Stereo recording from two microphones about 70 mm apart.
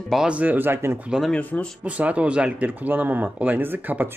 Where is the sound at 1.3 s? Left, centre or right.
Left.